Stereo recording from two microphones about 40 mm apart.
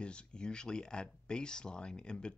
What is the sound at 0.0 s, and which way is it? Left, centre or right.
Speech, left.